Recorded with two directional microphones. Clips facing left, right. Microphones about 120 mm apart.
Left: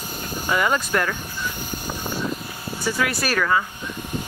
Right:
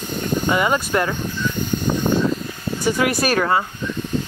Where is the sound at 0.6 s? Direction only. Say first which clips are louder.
Right 3 dB; 15° right (ahead or behind).